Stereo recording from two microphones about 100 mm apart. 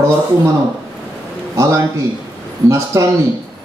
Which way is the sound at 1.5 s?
30° right (ahead or behind).